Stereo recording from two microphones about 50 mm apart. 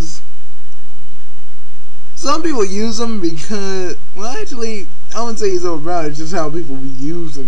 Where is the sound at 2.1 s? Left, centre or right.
Centre.